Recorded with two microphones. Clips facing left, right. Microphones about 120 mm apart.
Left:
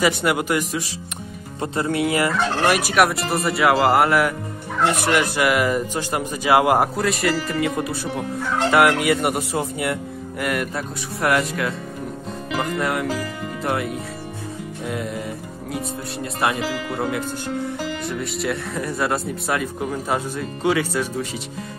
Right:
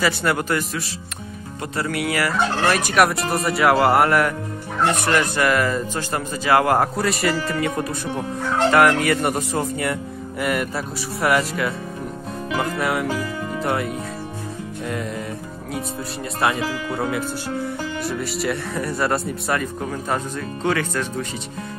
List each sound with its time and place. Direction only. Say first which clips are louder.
0.0 s speech: left 1 dB; 15° left (ahead or behind)
1.6 s fowl: left 3 dB; 25° left (ahead or behind)
2.9 s speech: even; centre (ahead or behind)
7.0 s speech: even; centre (ahead or behind)
12.7 s speech: even; 5° right (ahead or behind)
18.4 s speech: even; centre (ahead or behind)